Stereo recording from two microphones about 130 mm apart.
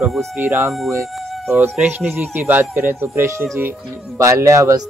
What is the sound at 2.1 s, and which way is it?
A man's voice, 15° right (ahead or behind).